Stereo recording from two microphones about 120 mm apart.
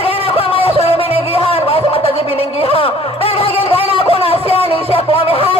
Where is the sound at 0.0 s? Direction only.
50° left (ahead or behind).